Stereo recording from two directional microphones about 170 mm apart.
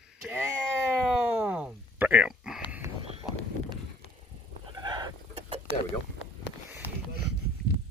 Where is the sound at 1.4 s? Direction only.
10° right (ahead or behind).